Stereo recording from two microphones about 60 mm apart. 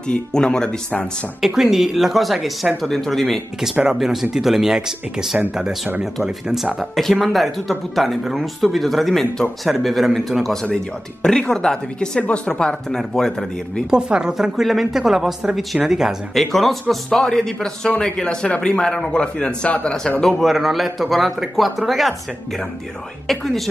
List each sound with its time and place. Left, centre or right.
0.1 s a man's voice: centre
1.4 s a man's voice: centre
6.8 s a man's voice: centre
13.8 s a woman's voice: centre
20.2 s a man's voice: centre
23.2 s a man's voice: centre